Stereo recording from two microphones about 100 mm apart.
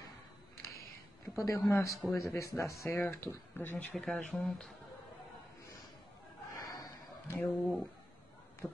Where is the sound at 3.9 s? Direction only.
10° left (ahead or behind).